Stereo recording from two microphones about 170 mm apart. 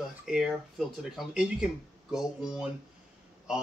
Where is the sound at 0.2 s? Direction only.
5° right (ahead or behind).